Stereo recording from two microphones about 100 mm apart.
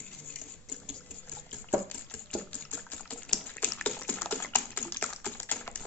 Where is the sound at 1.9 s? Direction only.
15° left (ahead or behind).